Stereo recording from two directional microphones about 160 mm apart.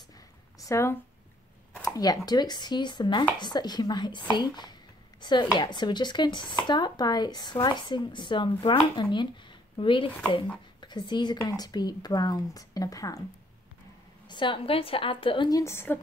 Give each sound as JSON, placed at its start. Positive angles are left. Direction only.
{"t": 0.6, "sound": "speech", "side_deg": 20}
{"t": 1.8, "sound": "a sound", "side_deg": 25}
{"t": 2.2, "sound": "speech", "side_deg": 25}
{"t": 14.2, "sound": "speech", "side_deg": 30}
{"t": 15.6, "sound": "a woman's voice", "side_deg": 15}